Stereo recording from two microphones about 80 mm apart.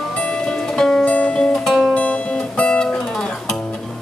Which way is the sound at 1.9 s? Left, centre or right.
Centre.